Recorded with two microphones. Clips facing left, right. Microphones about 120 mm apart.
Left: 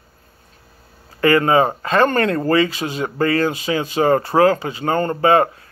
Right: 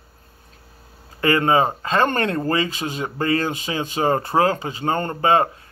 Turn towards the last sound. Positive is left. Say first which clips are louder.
# left 3 dB
turn(degrees=-25)  # may be behind; listen again after turning